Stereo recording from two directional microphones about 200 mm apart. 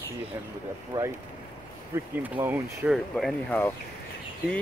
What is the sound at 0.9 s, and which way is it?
Speech, 20° right (ahead or behind).